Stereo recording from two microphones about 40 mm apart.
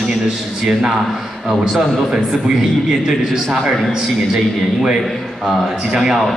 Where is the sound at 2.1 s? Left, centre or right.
Centre.